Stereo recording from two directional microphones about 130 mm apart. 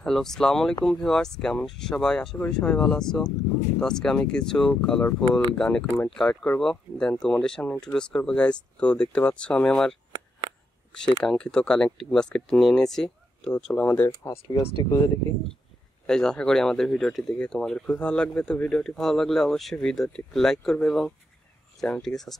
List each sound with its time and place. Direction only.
0.0 s speech: 5° left (ahead or behind)
16.1 s speech: 5° left (ahead or behind)